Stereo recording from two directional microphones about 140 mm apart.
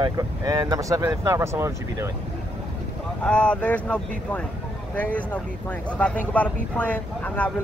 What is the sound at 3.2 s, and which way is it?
Speech, 10° left (ahead or behind).